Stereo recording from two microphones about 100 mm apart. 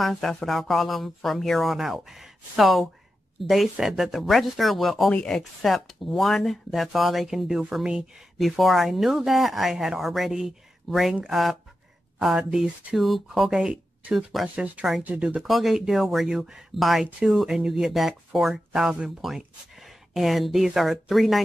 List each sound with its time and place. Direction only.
0.0 s speech: 5° left (ahead or behind)